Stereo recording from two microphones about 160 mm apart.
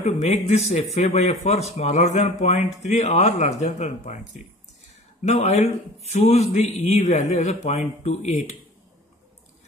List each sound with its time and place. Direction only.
0.0 s speech: 45° left (ahead or behind)
5.2 s speech: 45° left (ahead or behind)